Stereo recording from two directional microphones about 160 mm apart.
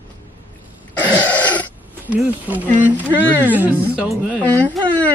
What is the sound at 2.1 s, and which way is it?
Speech, 10° right (ahead or behind).